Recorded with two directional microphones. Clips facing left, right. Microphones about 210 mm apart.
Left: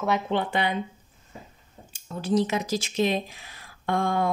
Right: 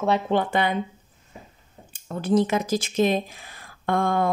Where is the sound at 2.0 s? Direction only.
55° right (ahead or behind).